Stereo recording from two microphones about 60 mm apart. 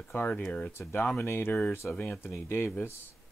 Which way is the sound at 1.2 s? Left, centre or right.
Left.